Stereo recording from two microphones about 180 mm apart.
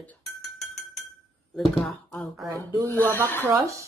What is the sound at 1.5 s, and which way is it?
Speech, 5° left (ahead or behind).